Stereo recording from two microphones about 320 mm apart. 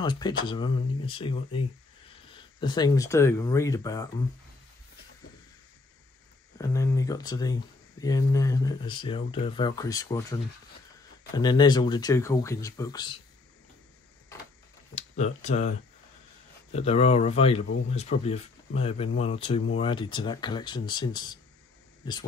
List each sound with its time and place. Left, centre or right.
0.0 s speech: centre
6.7 s speech: centre
15.0 s speech: left
16.7 s speech: centre